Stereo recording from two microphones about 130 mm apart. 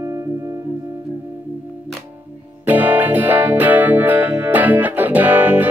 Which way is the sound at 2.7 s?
15° right (ahead or behind).